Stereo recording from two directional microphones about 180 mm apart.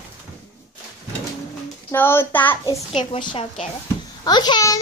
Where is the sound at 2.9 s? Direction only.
30° left (ahead or behind).